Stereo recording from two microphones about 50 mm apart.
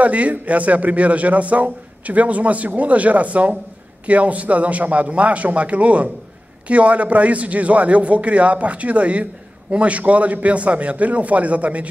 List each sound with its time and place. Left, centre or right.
0.0 s a man's voice: right